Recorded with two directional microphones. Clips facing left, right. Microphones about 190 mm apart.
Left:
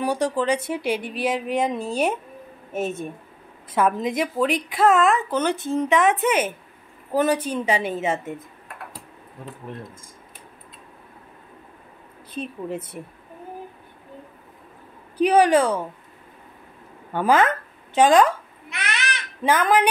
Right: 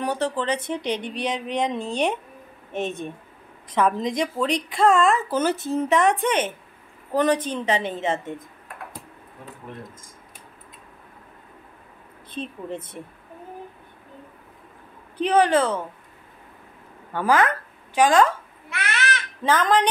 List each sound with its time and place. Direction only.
0.0 s a woman's voice: 10° left (ahead or behind)
12.3 s a woman's voice: 10° left (ahead or behind)
15.1 s a woman's voice: 10° left (ahead or behind)
17.1 s babbling: 20° left (ahead or behind)